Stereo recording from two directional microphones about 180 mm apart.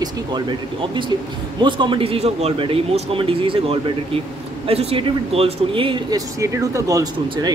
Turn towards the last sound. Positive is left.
turn(degrees=-20)  # may be behind; listen again after turning